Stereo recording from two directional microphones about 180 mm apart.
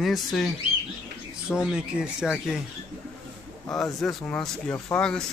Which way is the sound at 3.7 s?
Centre (ahead or behind).